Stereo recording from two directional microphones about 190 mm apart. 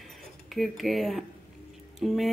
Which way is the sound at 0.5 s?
Centre (ahead or behind).